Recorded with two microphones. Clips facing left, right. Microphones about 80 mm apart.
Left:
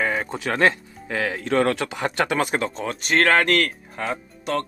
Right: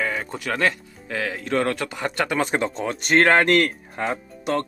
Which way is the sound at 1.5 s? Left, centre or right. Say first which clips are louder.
Left 2 dB; centre.